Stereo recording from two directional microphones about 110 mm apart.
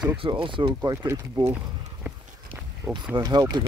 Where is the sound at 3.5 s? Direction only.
45° right (ahead or behind).